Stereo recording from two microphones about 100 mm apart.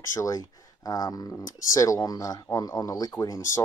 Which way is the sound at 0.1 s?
35° left (ahead or behind).